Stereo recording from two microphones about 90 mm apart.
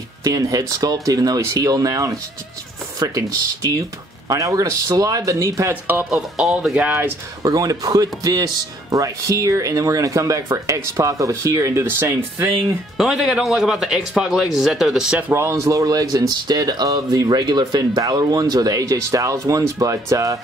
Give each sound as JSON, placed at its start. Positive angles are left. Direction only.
{"t": 0.2, "sound": "speech", "side_deg": -40}
{"t": 5.7, "sound": "speech", "side_deg": -20}
{"t": 6.0, "sound": "speech", "side_deg": -5}
{"t": 7.4, "sound": "speech", "side_deg": -40}
{"t": 12.9, "sound": "speech", "side_deg": -5}
{"t": 15.3, "sound": "speech", "side_deg": -30}